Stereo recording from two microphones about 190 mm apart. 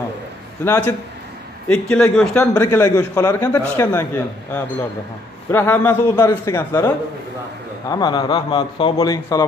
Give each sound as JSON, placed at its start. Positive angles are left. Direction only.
{"t": 0.7, "sound": "a man's voice", "side_deg": 15}
{"t": 2.4, "sound": "a man's voice", "side_deg": 15}
{"t": 7.9, "sound": "a man's voice", "side_deg": 20}